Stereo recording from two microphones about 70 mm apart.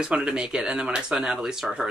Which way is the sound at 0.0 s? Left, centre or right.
Centre.